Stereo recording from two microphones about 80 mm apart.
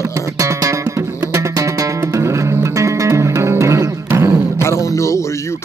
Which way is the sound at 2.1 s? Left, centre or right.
Right.